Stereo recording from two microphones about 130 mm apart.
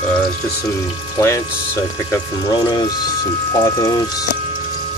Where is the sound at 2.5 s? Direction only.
35° left (ahead or behind).